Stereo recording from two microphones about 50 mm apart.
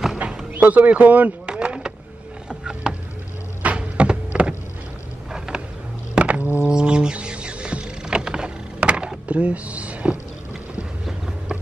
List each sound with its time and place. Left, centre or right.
0.2 s music: right
0.6 s speech: right
1.4 s vehicle: right
2.6 s a sound: centre
5.5 s skateboard: centre
6.1 s music: right
6.7 s a sound: centre